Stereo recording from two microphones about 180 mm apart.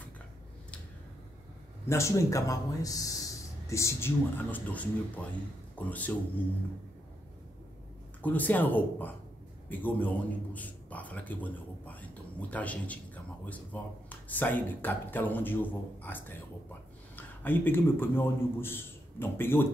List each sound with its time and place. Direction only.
1.9 s a man's voice: 15° left (ahead or behind)
8.2 s a man's voice: 10° left (ahead or behind)